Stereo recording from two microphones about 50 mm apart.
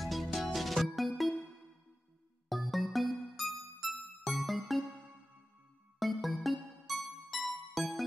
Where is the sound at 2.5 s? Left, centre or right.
Centre.